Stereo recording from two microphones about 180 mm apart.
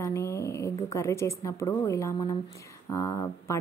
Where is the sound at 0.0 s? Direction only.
15° left (ahead or behind).